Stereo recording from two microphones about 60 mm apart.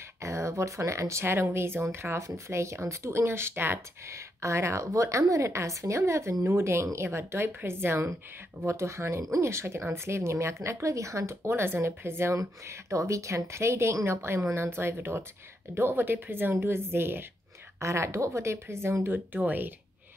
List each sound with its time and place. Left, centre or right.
0.2 s speech: right
4.1 s a woman's voice: right
12.4 s a woman's voice: right
17.7 s speech: right
19.0 s speech: right